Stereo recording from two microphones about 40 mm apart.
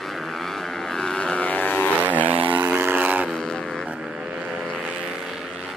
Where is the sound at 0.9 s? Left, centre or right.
Centre.